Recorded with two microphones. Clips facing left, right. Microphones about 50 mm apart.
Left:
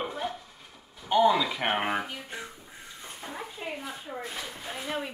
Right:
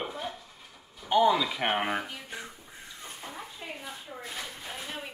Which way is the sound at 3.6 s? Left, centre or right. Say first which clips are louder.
Left 5 dB; left.